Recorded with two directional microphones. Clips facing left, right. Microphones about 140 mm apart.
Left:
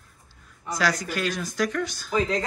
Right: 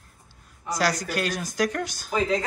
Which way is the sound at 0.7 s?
40° right (ahead or behind).